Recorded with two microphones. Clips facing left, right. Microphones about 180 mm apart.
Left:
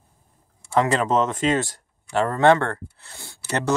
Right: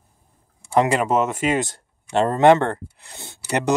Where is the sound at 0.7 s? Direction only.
10° right (ahead or behind).